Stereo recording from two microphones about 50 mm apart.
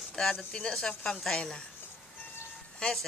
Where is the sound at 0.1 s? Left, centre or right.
Centre.